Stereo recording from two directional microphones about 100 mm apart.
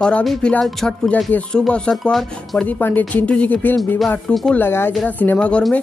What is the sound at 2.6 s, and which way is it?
Speech, 15° left (ahead or behind).